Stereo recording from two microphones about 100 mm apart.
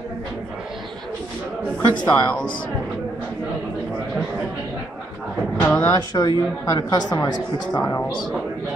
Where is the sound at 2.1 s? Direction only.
15° left (ahead or behind).